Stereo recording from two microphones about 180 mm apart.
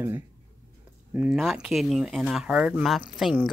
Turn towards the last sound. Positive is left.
turn(degrees=0)  # may be behind; listen again after turning